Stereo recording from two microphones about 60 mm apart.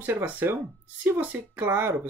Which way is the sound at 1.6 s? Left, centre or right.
Right.